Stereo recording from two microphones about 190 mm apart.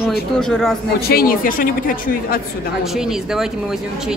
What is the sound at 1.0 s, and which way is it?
A woman's voice, 50° left (ahead or behind).